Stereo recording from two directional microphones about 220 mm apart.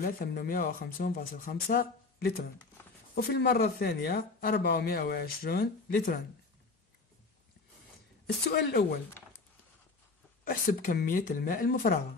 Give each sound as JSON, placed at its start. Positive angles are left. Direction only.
{"t": 0.2, "sound": "speech", "side_deg": 45}
{"t": 8.5, "sound": "speech", "side_deg": 45}
{"t": 10.4, "sound": "speech", "side_deg": 40}